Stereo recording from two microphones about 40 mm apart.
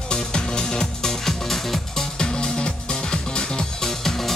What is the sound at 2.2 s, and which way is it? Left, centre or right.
Music, centre.